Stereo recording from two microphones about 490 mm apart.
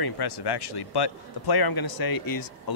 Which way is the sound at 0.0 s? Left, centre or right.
Left.